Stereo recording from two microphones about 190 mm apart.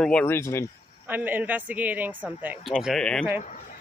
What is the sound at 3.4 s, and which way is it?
Speech, 40° left (ahead or behind).